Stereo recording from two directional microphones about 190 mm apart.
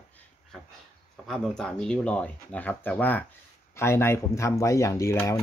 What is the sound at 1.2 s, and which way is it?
Speech, 5° left (ahead or behind).